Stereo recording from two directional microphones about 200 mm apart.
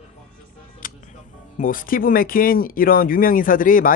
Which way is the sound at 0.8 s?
45° left (ahead or behind).